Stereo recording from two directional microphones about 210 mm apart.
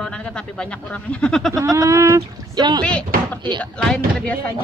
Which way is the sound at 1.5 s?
15° right (ahead or behind).